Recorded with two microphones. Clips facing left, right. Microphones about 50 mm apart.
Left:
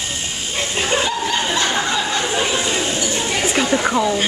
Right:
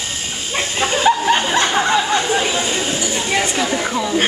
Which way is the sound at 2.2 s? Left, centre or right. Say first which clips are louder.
Right 1 dB; centre.